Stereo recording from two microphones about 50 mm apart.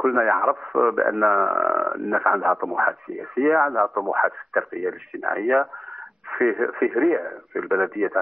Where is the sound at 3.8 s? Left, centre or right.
Centre.